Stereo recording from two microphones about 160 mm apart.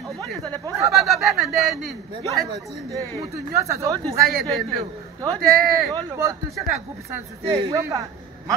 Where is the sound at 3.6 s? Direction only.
20° right (ahead or behind).